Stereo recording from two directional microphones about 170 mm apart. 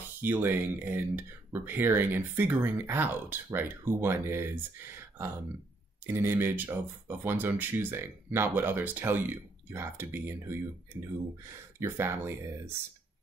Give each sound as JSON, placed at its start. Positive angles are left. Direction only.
{"t": 0.2, "sound": "speech", "side_deg": -10}
{"t": 6.0, "sound": "speech", "side_deg": -15}